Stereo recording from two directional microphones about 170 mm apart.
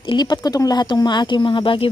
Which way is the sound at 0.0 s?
25° left (ahead or behind).